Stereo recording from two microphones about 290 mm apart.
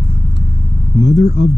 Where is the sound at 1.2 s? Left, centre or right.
Left.